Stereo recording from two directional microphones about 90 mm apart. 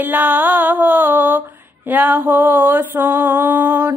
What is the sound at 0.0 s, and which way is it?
Music, 20° right (ahead or behind).